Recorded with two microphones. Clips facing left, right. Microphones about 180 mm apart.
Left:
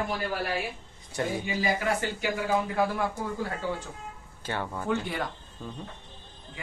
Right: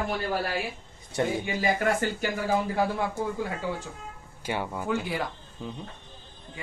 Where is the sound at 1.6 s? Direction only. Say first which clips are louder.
Right 2 dB; 50° right (ahead or behind).